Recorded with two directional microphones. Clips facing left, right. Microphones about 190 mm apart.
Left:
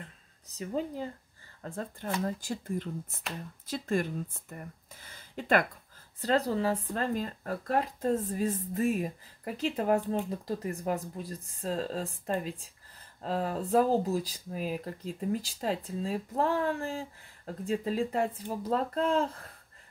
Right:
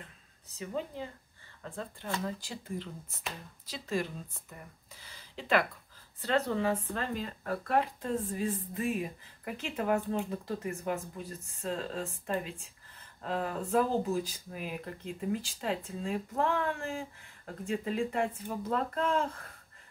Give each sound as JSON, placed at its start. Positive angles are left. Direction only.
{"t": 0.5, "sound": "speech", "side_deg": 40}
{"t": 6.2, "sound": "speech", "side_deg": 35}